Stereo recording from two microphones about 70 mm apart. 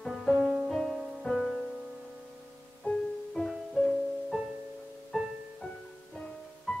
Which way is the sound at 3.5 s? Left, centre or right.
Centre.